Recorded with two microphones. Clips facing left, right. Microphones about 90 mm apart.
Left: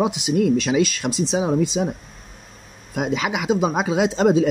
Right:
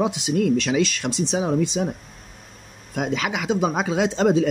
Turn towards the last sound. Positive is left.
turn(degrees=15)  # may be behind; listen again after turning